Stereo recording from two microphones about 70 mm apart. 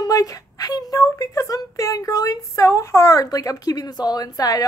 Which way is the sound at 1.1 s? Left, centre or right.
Left.